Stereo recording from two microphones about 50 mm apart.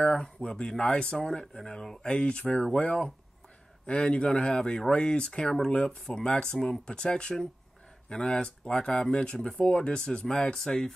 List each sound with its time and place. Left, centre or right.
0.0 s speech: centre
1.1 s speech: centre
2.5 s speech: centre
2.8 s speech: left